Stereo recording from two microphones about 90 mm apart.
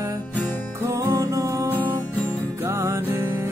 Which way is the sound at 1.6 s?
20° right (ahead or behind).